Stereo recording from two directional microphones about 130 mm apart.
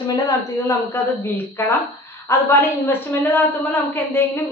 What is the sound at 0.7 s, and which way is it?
A woman's voice, 20° left (ahead or behind).